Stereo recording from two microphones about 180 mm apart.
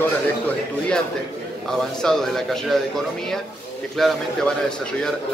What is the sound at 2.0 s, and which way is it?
Speech, 5° left (ahead or behind).